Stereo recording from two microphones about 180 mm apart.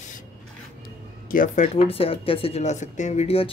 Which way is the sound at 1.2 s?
50° left (ahead or behind).